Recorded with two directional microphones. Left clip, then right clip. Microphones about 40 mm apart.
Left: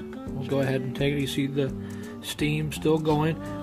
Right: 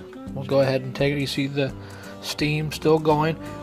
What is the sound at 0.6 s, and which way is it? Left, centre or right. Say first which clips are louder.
Speech: right 5 dB; right.